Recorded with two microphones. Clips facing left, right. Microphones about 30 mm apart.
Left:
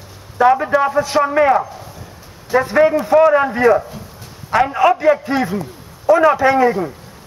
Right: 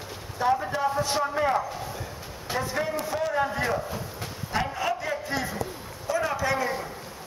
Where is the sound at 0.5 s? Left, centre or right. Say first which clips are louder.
Left 11 dB; left.